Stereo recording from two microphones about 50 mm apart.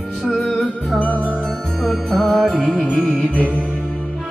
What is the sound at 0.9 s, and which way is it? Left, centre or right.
Music, left.